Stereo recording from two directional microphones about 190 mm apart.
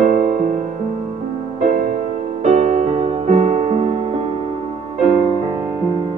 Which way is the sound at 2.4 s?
40° right (ahead or behind).